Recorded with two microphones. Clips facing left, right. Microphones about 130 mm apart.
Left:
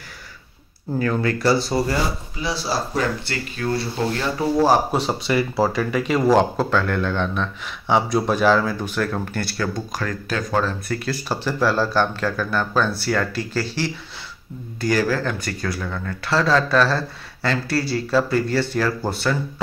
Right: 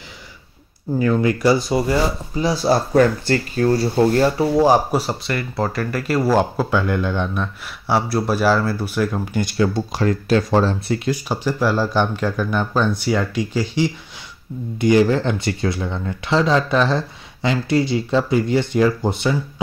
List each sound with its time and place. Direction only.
1.2 s speech: 15° right (ahead or behind)
2.3 s speech: 45° right (ahead or behind)
3.5 s speech: 35° right (ahead or behind)
4.6 s speech: 10° right (ahead or behind)
5.3 s speech: 5° left (ahead or behind); by 9.7 s 15° right (ahead or behind)
9.8 s speech: 30° right (ahead or behind)
11.1 s speech: 15° right (ahead or behind)